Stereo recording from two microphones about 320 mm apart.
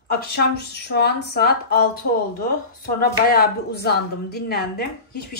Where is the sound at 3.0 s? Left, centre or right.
Left.